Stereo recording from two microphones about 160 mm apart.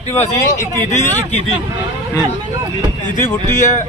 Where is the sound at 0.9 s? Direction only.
50° left (ahead or behind).